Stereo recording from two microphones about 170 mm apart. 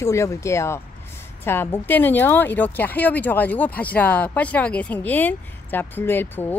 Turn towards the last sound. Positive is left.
turn(degrees=10)  # may be behind; listen again after turning